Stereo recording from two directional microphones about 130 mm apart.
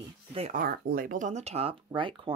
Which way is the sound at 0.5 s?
90° right.